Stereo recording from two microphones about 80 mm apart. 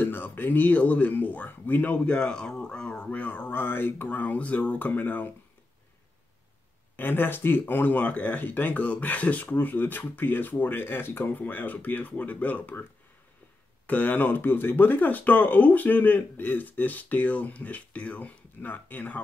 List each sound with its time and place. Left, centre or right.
0.0 s speech: left
7.0 s speech: left
13.8 s speech: left